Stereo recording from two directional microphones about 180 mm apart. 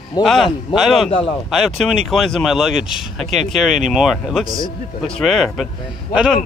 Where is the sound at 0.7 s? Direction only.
Centre (ahead or behind).